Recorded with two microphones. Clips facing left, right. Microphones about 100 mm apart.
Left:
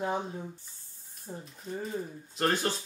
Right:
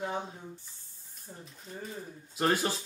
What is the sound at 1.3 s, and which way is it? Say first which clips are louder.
Speech: left 6 dB; 40° left (ahead or behind).